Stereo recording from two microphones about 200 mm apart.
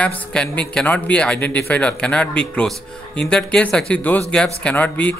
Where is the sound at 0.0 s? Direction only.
5° left (ahead or behind).